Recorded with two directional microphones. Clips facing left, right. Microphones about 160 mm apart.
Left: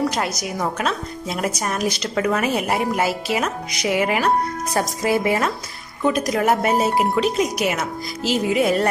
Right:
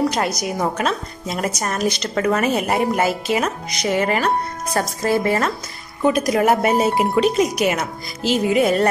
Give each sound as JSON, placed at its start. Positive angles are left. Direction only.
{"t": 0.1, "sound": "speech", "side_deg": 0}
{"t": 6.0, "sound": "speech", "side_deg": -5}